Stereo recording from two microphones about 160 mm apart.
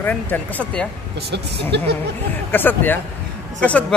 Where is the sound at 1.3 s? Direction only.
90° right.